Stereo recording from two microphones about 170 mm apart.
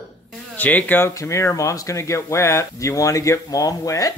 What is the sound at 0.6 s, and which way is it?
Speech, 10° left (ahead or behind).